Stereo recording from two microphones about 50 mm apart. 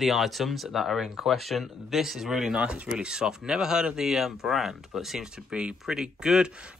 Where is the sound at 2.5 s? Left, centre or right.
Right.